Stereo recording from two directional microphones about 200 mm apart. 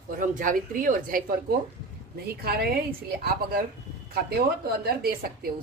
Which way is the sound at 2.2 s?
50° right (ahead or behind).